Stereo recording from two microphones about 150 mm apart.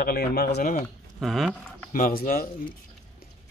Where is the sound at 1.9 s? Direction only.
65° left (ahead or behind).